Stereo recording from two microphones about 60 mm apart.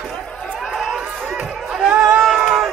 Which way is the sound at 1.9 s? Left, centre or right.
Centre.